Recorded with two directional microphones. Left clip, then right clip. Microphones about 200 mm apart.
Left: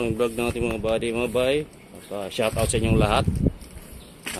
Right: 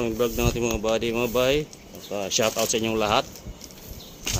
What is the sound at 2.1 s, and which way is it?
Speech, 10° right (ahead or behind).